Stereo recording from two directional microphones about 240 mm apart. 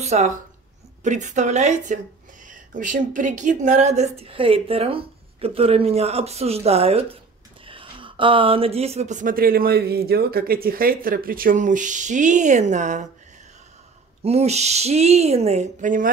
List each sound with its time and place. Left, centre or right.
0.0 s a woman's voice: right
14.2 s a woman's voice: right